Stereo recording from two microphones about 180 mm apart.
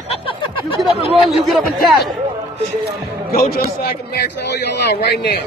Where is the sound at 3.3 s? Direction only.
55° left (ahead or behind).